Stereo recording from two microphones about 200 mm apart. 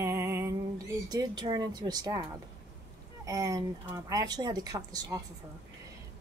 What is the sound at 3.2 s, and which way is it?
A woman's voice, 15° right (ahead or behind).